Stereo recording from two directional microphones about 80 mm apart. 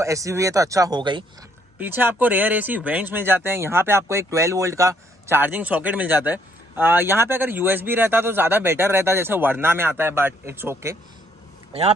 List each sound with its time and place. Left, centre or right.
0.0 s speech: right
0.9 s speech: right
1.8 s speech: right
5.4 s speech: right